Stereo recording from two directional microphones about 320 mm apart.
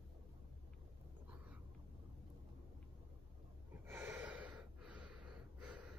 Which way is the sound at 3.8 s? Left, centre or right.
Centre.